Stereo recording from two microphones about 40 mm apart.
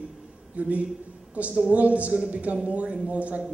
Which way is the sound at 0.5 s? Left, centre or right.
Right.